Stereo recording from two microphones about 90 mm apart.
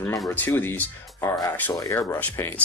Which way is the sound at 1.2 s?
35° left (ahead or behind).